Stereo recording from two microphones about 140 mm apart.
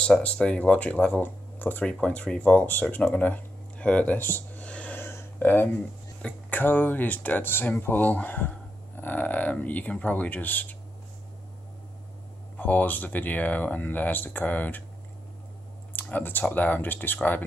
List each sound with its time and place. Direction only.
0.0 s speech: 5° left (ahead or behind)
12.5 s speech: 10° left (ahead or behind)
15.9 s speech: 10° left (ahead or behind)